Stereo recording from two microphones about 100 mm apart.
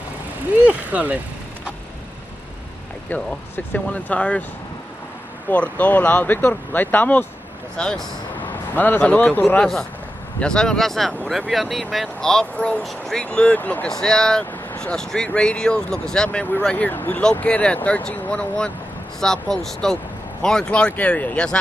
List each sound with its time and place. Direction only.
0.7 s vehicle: 15° right (ahead or behind)
3.1 s speech: 15° left (ahead or behind)
5.5 s a man's voice: 15° left (ahead or behind)